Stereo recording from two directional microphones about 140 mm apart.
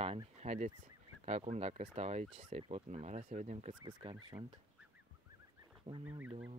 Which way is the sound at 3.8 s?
35° right (ahead or behind).